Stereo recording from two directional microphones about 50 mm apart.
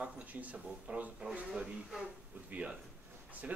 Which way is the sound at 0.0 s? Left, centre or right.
Right.